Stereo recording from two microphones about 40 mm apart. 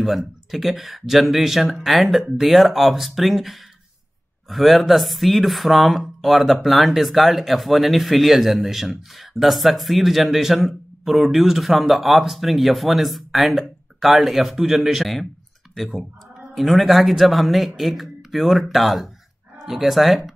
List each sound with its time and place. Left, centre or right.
0.5 s a man's voice: centre
15.7 s a man's voice: centre